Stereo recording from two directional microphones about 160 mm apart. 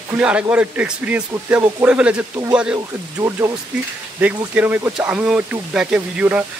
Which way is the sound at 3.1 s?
15° right (ahead or behind).